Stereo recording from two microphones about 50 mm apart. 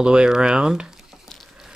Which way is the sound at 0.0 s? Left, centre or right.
Centre.